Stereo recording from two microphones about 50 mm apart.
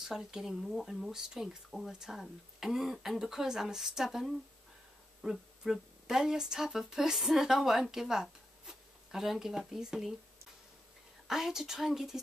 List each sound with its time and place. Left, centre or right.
0.0 s speech: centre
11.2 s speech: centre